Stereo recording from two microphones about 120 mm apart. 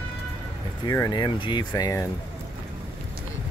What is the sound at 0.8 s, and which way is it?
Speech, 30° left (ahead or behind).